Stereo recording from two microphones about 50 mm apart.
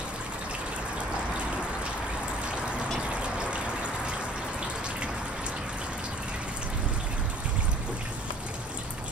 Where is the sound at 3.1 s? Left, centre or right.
Right.